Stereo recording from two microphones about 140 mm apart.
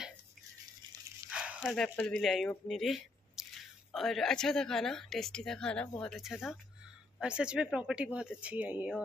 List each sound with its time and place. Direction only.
1.3 s dog: 5° right (ahead or behind)
1.7 s a woman's voice: 5° left (ahead or behind); by 8.9 s 10° right (ahead or behind)